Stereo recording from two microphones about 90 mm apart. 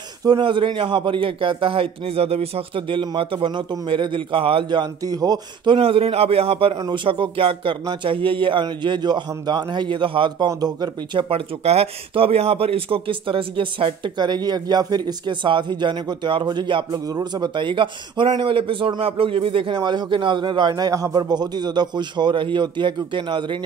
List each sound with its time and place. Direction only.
0.4 s a man's voice: 65° right (ahead or behind); by 5.4 s 45° right (ahead or behind)
5.7 s a man's voice: 90° right
6.9 s a man's voice: 75° right (ahead or behind)
7.8 s a man's voice: 60° right (ahead or behind)
10.5 s speech: 45° right (ahead or behind)
11.1 s a man's voice: 90° right; by 23.6 s 65° right (ahead or behind)